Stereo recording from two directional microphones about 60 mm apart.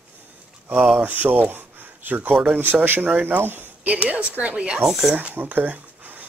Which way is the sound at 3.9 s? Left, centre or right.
Right.